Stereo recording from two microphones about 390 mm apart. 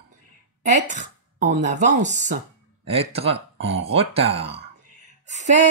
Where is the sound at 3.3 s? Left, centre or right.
Right.